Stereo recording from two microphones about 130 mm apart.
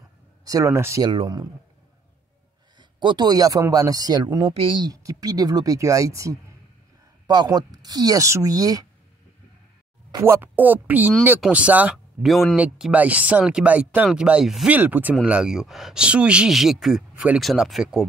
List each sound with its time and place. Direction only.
0.5 s speech: 25° right (ahead or behind)
1.0 s speech: 35° right (ahead or behind)
2.8 s speech: 35° right (ahead or behind)
10.1 s speech: 20° right (ahead or behind)
12.2 s speech: centre (ahead or behind)